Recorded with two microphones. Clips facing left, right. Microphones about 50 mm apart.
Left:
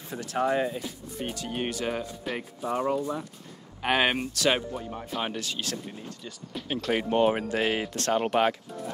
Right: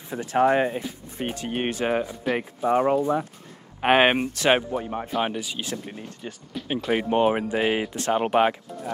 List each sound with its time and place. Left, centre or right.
0.1 s speech: right
5.1 s speech: centre
5.9 s speech: right
6.7 s speech: centre